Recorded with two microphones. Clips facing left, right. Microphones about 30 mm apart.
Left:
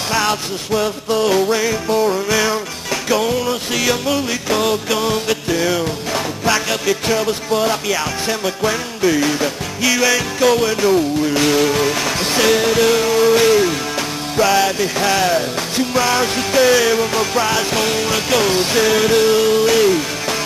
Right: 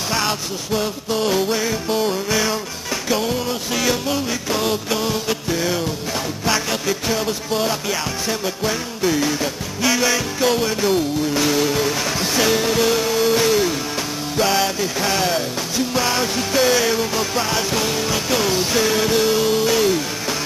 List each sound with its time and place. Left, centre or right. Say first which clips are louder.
0.1 s music: left 5 dB; centre
9.8 s music: left 3 dB; centre
11.2 s music: left 4 dB; left
14.4 s music: left 4 dB; centre
14.8 s music: left 4 dB; centre